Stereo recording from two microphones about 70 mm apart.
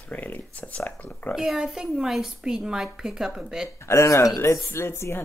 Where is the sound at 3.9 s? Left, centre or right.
Left.